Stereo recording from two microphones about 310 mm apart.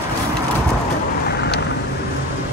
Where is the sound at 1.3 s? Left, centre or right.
Left.